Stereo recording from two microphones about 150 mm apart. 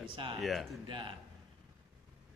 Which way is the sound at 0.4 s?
Centre (ahead or behind).